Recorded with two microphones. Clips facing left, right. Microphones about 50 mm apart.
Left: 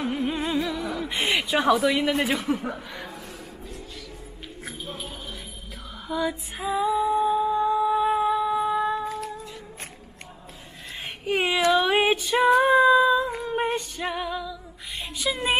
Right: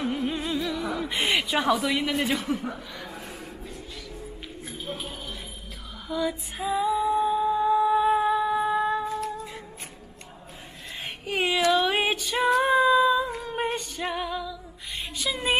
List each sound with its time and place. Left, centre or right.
0.3 s music: centre
0.8 s a woman's voice: centre
2.7 s speech: centre
6.0 s female singing: centre
11.2 s speech: centre
11.7 s music: centre
12.6 s humming: centre
13.4 s female singing: centre
15.1 s speech: centre